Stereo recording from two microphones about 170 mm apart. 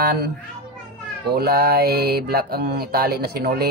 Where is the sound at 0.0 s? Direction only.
70° right (ahead or behind).